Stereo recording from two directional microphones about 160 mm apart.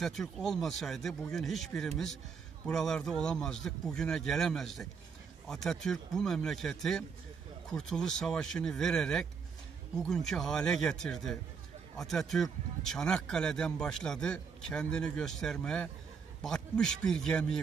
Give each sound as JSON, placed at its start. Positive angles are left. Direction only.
{"t": 0.0, "sound": "a man's voice", "side_deg": 0}